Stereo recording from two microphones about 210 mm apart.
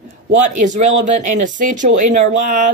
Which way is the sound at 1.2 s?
35° right (ahead or behind).